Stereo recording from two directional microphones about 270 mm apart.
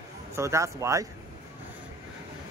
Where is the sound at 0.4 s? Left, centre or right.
Centre.